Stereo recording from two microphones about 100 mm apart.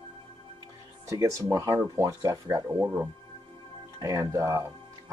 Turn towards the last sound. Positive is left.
turn(degrees=-30)  # may be behind; listen again after turning